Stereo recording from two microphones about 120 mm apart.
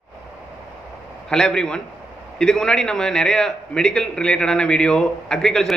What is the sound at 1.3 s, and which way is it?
A man's voice, 5° left (ahead or behind).